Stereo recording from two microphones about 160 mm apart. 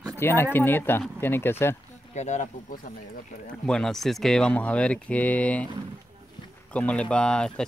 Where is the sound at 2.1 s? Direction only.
45° left (ahead or behind).